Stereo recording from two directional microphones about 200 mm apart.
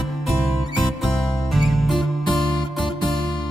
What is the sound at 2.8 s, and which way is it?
Music, 25° left (ahead or behind).